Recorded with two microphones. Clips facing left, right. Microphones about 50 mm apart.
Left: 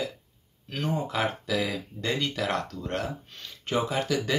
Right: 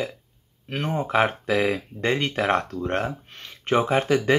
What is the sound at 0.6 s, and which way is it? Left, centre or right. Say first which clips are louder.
Speech: right 3 dB; right.